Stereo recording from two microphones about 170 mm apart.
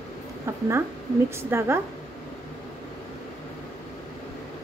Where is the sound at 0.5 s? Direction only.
15° right (ahead or behind).